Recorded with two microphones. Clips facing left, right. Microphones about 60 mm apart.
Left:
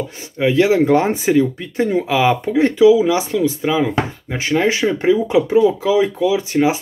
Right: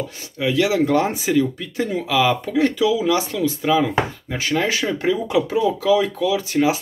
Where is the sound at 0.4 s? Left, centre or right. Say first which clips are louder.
Left 5 dB; left.